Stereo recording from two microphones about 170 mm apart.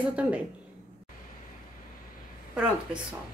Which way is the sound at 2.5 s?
5° right (ahead or behind).